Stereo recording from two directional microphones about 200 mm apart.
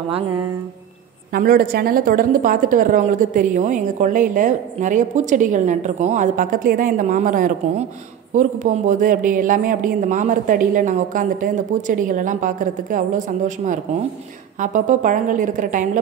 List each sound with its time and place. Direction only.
1.3 s a woman's voice: 45° right (ahead or behind)
14.6 s a woman's voice: 40° right (ahead or behind)